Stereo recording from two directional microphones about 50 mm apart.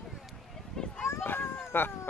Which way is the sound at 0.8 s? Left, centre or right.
Centre.